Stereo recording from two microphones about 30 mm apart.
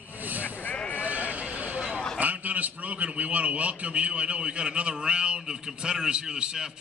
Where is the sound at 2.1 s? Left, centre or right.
Right.